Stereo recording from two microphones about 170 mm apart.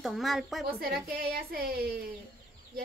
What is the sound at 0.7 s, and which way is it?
Speech, 60° right (ahead or behind).